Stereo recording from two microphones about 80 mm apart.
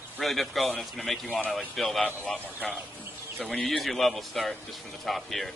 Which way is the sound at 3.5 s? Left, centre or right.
Centre.